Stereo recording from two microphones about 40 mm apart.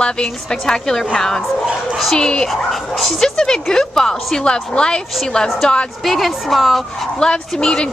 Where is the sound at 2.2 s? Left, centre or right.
Centre.